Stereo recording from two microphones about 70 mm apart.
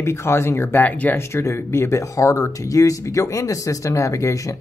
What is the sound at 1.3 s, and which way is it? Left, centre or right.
Speech, left.